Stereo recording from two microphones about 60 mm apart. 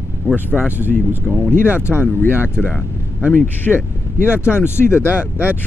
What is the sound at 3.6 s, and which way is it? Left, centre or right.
Speech, left.